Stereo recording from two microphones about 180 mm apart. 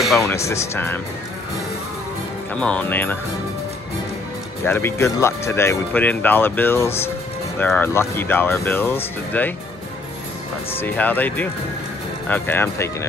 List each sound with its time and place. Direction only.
0.2 s speech: 15° left (ahead or behind)
2.5 s speech: 5° left (ahead or behind)
4.6 s speech: 15° left (ahead or behind)
10.8 s speech: 10° left (ahead or behind)